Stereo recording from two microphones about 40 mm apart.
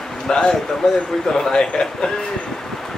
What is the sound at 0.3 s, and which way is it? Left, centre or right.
Speech, centre.